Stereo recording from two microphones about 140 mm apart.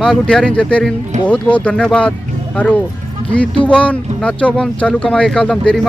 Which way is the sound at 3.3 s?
10° left (ahead or behind).